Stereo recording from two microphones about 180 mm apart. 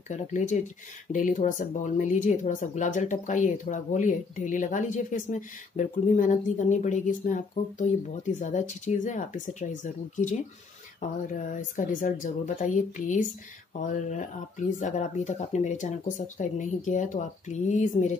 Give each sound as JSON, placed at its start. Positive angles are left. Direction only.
{"t": 0.1, "sound": "speech", "side_deg": 40}
{"t": 14.8, "sound": "speech", "side_deg": 40}